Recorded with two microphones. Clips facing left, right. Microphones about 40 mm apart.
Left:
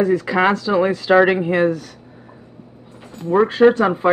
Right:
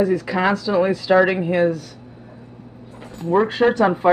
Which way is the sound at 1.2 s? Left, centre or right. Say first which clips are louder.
Left 2 dB; left.